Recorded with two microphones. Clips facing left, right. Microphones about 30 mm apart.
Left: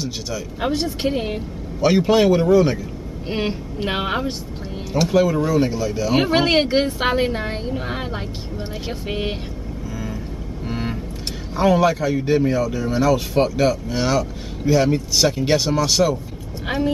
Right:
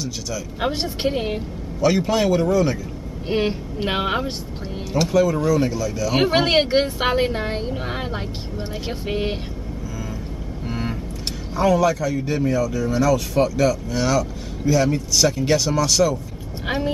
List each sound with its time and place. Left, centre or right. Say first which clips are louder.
0.6 s speech: left 2 dB; centre
1.8 s speech: left 3 dB; centre
3.3 s speech: right 2 dB; centre
4.9 s speech: left 1 dB; left
6.1 s speech: even; centre
10.7 s vehicle: left 1 dB; centre
11.5 s speech: left 1 dB; left
16.6 s speech: left 2 dB; centre